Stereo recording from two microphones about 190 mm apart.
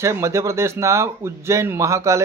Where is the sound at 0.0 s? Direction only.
15° right (ahead or behind).